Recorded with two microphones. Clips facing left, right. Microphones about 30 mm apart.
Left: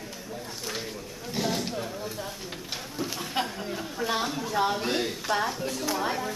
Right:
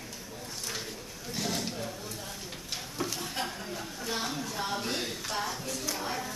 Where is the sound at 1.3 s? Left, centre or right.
Centre.